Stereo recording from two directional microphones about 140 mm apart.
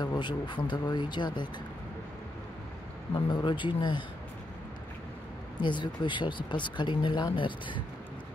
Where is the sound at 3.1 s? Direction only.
35° left (ahead or behind).